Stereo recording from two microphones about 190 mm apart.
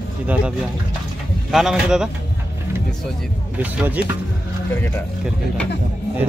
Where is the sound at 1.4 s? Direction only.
Centre (ahead or behind).